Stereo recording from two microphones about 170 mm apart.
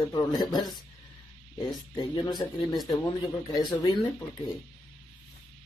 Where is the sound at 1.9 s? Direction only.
25° left (ahead or behind).